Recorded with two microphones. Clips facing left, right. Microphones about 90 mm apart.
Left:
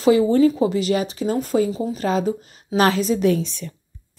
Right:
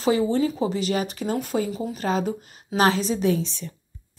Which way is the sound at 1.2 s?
35° left (ahead or behind).